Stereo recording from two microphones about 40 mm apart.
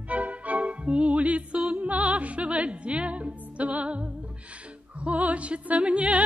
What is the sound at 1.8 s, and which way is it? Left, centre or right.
Speech, right.